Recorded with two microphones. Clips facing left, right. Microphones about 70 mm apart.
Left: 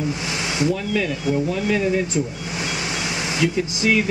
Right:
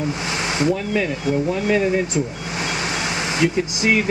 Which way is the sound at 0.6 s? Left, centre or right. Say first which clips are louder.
Right 1 dB; right.